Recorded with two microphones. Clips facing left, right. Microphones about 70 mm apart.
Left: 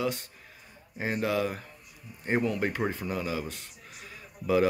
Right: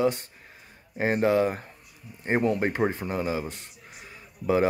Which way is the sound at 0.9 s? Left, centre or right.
Right.